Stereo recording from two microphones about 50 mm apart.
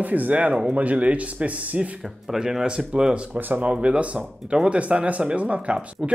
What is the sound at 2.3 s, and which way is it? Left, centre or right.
Speech, centre.